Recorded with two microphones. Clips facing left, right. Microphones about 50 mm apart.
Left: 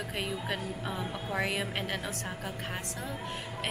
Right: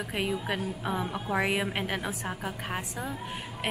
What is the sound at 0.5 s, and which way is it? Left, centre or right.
Speech, centre.